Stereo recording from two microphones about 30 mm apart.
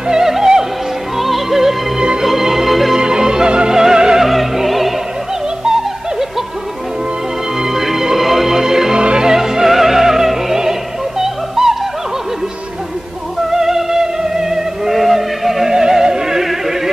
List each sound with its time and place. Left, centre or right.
0.1 s music: centre
1.1 s music: centre
3.0 s music: right
3.7 s music: centre
4.2 s opera: centre
7.6 s music: centre
8.9 s music: right
9.2 s opera: centre
13.5 s music: centre
15.0 s a sound: centre
15.7 s music: right